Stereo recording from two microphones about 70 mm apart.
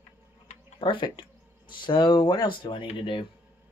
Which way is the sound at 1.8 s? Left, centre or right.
Left.